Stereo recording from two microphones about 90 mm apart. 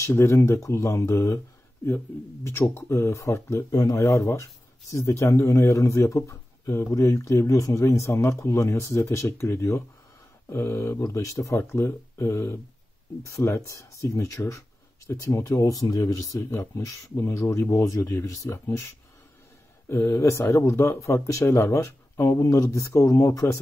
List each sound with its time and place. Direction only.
0.0 s speech: 35° left (ahead or behind)
2.4 s speech: 30° left (ahead or behind)
19.9 s speech: 30° left (ahead or behind)